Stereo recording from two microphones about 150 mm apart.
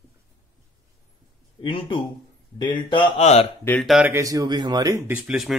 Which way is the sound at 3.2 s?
45° left (ahead or behind).